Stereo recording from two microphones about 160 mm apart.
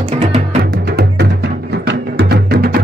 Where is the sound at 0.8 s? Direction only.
90° right.